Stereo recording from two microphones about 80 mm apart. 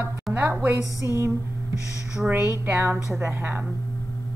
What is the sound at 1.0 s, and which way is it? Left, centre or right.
A woman's voice, right.